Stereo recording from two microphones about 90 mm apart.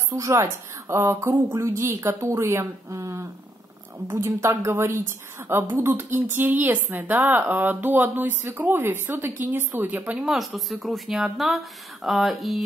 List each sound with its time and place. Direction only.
0.1 s speech: 35° right (ahead or behind)
10.1 s speech: 5° right (ahead or behind)